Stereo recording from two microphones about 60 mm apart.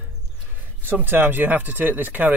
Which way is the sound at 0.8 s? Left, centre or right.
Right.